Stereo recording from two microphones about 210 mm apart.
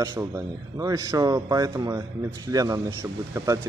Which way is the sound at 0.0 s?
15° right (ahead or behind).